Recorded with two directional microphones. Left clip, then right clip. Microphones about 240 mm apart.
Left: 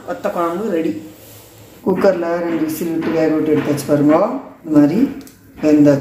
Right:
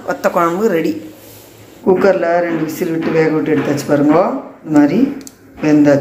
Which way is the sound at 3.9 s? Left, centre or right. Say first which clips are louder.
Right 2 dB; centre.